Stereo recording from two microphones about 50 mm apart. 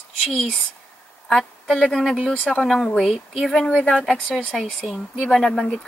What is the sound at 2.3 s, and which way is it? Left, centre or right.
Speech, left.